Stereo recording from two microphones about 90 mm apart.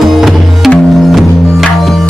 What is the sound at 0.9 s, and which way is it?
Music, centre (ahead or behind).